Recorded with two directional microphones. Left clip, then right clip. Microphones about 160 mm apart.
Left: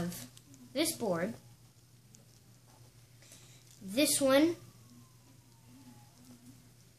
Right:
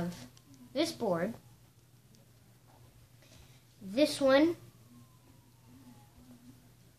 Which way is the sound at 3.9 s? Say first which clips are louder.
Right 2 dB; 20° left (ahead or behind).